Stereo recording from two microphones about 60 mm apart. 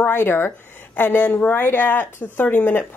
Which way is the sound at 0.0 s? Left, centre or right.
Left.